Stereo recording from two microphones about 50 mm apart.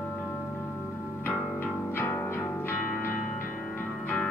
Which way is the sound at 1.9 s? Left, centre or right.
Left.